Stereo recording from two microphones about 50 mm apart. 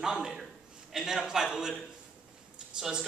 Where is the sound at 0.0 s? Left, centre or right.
Centre.